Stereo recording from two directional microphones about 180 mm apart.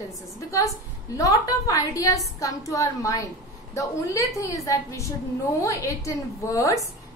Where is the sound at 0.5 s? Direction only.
15° left (ahead or behind).